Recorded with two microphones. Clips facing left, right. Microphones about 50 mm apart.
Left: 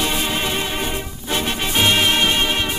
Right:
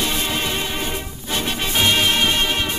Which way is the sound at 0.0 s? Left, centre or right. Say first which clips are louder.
Left 1 dB; centre.